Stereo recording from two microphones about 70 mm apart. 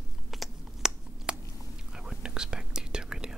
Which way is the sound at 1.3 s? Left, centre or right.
Centre.